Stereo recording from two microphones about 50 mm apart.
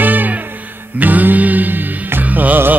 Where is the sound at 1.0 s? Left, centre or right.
Right.